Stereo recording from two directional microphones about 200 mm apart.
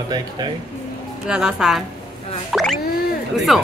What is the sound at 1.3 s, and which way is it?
Speech, 5° right (ahead or behind).